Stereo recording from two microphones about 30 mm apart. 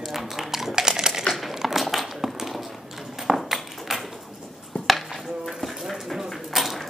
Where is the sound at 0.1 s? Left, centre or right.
Centre.